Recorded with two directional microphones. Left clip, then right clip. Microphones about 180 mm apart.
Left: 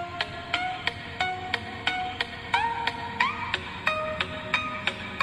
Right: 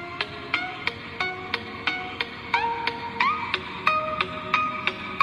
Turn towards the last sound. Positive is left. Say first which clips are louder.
# right 4 dB
turn(degrees=-5)  # may be behind; listen again after turning